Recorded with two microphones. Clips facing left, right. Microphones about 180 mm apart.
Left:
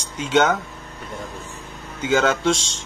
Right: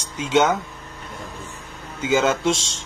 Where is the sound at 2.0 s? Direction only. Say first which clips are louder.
Even; 5° right (ahead or behind).